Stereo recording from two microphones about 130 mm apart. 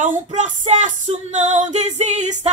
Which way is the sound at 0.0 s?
70° right (ahead or behind).